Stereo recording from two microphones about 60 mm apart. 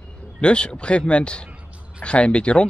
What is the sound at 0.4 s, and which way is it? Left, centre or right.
A man's voice, centre.